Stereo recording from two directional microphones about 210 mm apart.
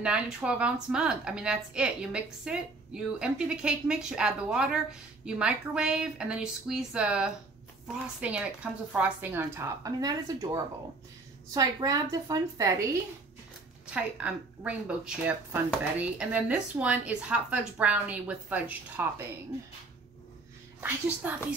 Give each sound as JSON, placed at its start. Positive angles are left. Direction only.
{"t": 0.0, "sound": "a woman's voice", "side_deg": -5}
{"t": 13.8, "sound": "speech", "side_deg": -5}
{"t": 20.8, "sound": "speech", "side_deg": -5}